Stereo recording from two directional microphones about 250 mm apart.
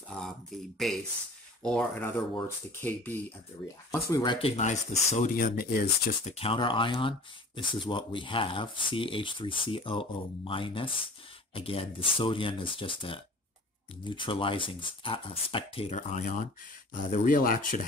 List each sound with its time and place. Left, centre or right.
0.7 s speech: centre; by 17.8 s left